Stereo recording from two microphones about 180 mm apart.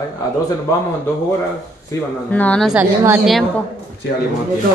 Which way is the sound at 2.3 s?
10° left (ahead or behind).